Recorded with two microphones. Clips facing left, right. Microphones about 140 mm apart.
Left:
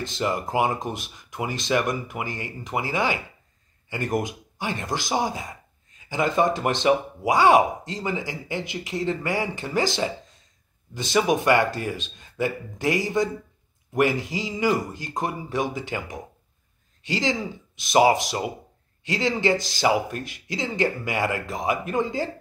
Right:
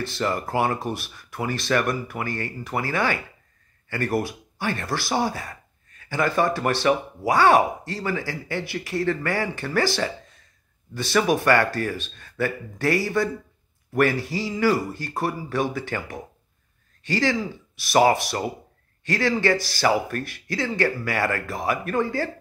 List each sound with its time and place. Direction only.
0.0 s speech: 15° left (ahead or behind)